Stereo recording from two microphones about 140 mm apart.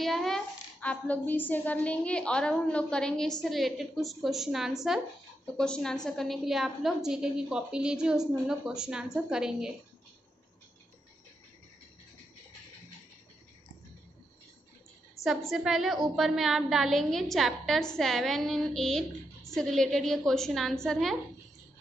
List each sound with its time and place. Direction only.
0.0 s a woman's voice: centre (ahead or behind)
15.5 s a woman's voice: 5° right (ahead or behind)